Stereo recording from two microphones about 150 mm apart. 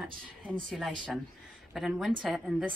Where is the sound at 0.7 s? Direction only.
Centre (ahead or behind).